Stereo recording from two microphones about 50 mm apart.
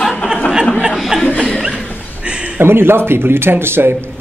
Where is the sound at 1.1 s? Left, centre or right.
Centre.